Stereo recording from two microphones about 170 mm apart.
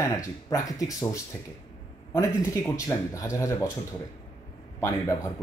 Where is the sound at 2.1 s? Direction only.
15° left (ahead or behind).